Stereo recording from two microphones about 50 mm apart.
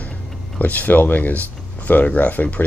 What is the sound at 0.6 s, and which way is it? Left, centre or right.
Speech, left.